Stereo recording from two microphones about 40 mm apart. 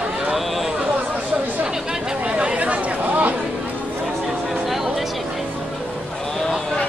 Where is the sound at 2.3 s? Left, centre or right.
Right.